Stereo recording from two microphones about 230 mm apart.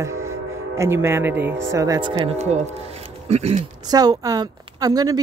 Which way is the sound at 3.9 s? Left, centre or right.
Centre.